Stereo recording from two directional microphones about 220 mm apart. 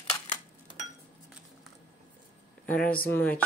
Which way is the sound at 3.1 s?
10° left (ahead or behind).